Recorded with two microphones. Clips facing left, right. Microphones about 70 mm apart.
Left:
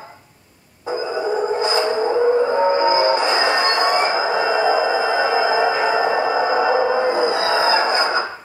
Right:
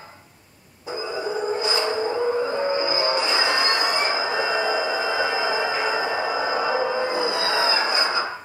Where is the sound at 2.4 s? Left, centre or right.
Left.